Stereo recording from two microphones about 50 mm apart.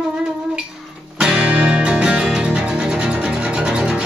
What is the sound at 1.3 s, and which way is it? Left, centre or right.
Music, right.